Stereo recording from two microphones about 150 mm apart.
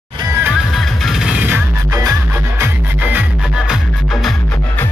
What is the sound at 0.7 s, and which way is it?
Music, centre (ahead or behind).